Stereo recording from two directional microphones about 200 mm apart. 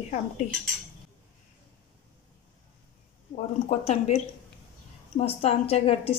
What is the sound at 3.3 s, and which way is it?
Speech, 30° left (ahead or behind).